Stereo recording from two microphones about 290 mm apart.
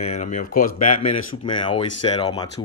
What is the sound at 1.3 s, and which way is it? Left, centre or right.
Speech, left.